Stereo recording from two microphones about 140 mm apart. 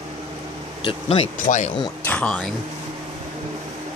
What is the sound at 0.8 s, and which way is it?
Speech, 40° left (ahead or behind).